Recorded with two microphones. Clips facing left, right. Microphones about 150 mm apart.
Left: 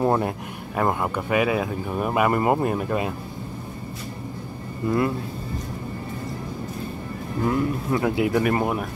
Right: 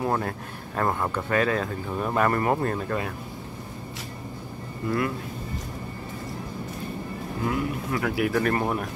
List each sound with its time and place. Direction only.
0.0 s a sound: 25° left (ahead or behind)
0.7 s speech: 15° left (ahead or behind)
4.8 s speech: 25° left (ahead or behind)
7.9 s speech: 25° left (ahead or behind)
8.4 s speech: 10° left (ahead or behind)